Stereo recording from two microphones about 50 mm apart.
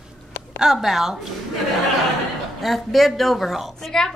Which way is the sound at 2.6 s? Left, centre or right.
Centre.